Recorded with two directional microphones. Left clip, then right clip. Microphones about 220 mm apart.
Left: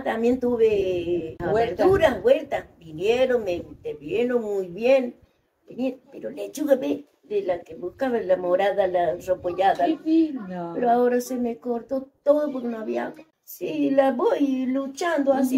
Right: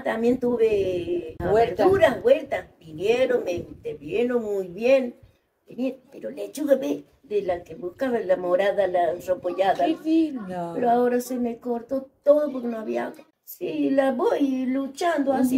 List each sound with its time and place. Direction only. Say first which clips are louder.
0.0 s a woman's voice: even; centre (ahead or behind)
9.8 s speech: left 1 dB; 45° right (ahead or behind)
10.8 s a woman's voice: left 1 dB; centre (ahead or behind)